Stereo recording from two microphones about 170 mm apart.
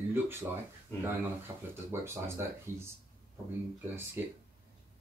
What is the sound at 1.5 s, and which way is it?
Speech, 20° right (ahead or behind).